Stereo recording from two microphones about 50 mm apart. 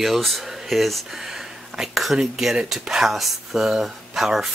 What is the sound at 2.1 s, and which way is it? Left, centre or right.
Speech, centre.